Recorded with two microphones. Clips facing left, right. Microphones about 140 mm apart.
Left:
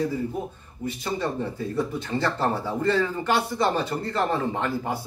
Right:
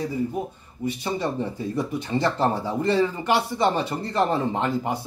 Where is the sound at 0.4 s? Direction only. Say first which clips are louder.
Right 2 dB; 80° right.